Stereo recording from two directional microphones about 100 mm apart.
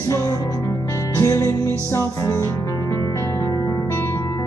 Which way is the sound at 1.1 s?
35° left (ahead or behind).